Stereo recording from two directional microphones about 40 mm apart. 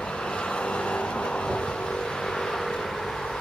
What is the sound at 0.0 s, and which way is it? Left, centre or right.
Vehicle, left.